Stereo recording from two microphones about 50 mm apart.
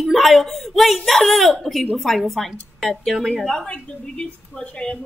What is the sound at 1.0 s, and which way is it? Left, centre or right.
Speech, centre.